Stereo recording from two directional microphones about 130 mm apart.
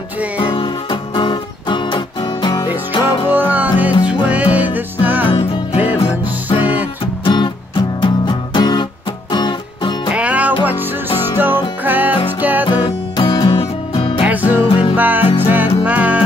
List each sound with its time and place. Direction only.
0.4 s music: 40° left (ahead or behind)
3.3 s music: 15° right (ahead or behind)
5.3 s music: 45° left (ahead or behind)
6.6 s music: 10° right (ahead or behind)
7.2 s music: 35° left (ahead or behind)
10.1 s music: 10° right (ahead or behind)
12.6 s music: 35° left (ahead or behind)
14.2 s music: 10° right (ahead or behind)
14.6 s music: 45° left (ahead or behind)
15.0 s music: 15° right (ahead or behind)